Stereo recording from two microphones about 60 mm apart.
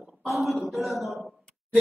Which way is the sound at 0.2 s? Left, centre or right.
Centre.